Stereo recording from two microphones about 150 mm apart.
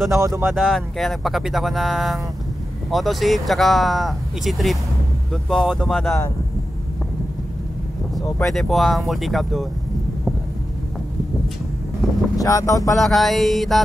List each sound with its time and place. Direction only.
0.2 s speech: 20° right (ahead or behind)
0.5 s speech: centre (ahead or behind)
8.4 s speech: centre (ahead or behind)
12.4 s speech: 20° left (ahead or behind)
12.9 s speech: centre (ahead or behind)